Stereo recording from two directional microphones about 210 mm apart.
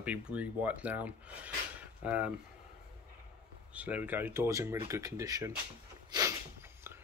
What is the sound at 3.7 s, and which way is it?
Speech, 5° right (ahead or behind).